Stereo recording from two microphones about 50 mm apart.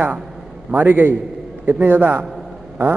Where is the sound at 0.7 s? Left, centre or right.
Right.